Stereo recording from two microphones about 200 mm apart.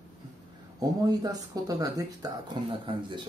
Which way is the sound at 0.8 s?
20° right (ahead or behind).